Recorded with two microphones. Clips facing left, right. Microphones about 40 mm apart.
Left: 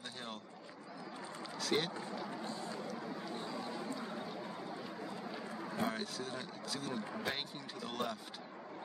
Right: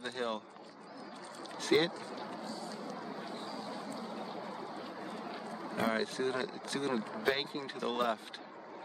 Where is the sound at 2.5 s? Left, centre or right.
Left.